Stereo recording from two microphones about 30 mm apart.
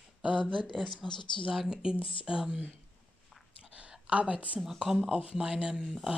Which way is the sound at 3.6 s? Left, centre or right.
Right.